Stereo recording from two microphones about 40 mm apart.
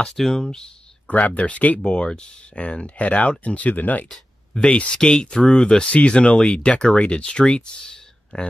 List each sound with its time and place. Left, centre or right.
0.1 s speech: centre
1.0 s speech: left
1.9 s speech: left
4.6 s speech: left